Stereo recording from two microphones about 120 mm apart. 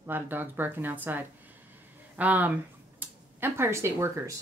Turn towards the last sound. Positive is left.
turn(degrees=-25)  # may be behind; listen again after turning